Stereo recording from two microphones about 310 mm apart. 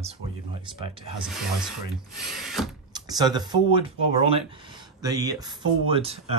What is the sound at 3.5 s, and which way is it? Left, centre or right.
Speech, centre.